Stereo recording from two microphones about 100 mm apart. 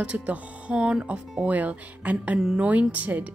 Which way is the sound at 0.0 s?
10° right (ahead or behind).